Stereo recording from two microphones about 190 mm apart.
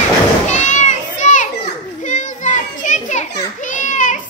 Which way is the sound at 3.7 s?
40° left (ahead or behind).